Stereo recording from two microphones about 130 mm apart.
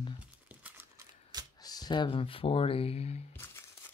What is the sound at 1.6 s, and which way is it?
Speech, 30° left (ahead or behind).